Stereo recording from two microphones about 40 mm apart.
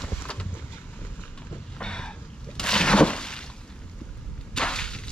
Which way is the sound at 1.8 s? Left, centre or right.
Left.